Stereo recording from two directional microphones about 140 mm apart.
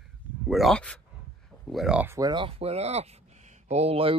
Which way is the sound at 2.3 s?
40° right (ahead or behind).